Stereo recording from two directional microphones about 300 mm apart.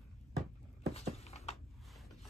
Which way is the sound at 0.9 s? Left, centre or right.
Left.